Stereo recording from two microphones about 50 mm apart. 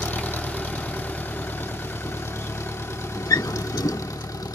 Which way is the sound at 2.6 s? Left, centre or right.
Left.